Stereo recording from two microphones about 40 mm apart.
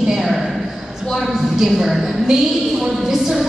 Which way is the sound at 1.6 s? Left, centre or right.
Centre.